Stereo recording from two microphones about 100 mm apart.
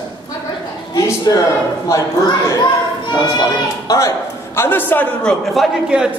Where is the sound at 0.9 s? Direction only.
40° left (ahead or behind); by 5.0 s 20° left (ahead or behind).